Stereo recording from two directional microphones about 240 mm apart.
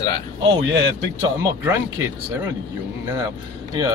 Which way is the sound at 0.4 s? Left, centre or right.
Right.